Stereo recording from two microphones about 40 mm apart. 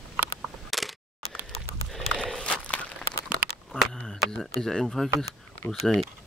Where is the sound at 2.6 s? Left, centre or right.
Left.